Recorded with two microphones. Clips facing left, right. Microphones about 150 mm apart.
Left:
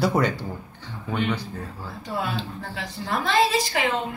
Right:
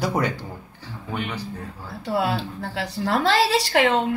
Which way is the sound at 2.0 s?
80° right.